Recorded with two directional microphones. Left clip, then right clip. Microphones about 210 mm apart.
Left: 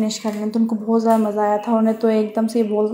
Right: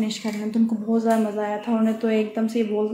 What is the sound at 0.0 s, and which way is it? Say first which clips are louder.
Speech: left 5 dB; 15° left (ahead or behind).